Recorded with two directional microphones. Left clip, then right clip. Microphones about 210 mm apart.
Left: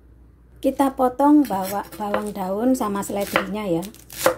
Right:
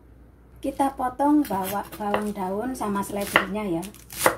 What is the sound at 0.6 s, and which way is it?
Speech, 45° left (ahead or behind).